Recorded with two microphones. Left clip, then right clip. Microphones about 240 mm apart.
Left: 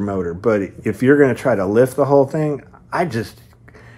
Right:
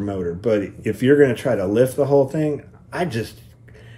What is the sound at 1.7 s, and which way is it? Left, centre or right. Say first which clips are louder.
Speech: left 2 dB; centre.